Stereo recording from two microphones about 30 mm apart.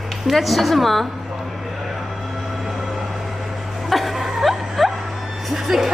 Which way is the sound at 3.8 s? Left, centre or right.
Centre.